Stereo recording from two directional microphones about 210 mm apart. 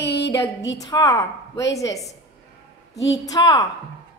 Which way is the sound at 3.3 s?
20° left (ahead or behind).